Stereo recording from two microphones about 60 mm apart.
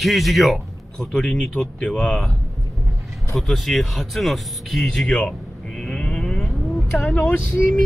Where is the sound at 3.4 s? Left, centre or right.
Centre.